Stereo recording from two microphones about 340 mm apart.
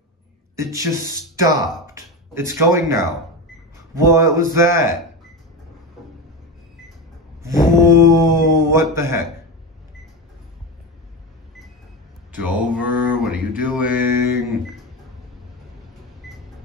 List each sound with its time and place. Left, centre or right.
0.6 s speech: centre
7.8 s speech: centre
12.4 s mantra: centre
16.2 s a sound: centre